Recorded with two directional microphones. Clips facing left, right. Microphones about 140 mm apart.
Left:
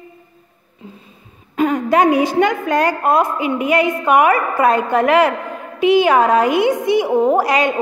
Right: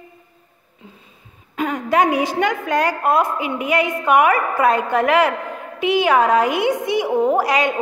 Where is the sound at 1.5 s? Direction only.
35° left (ahead or behind).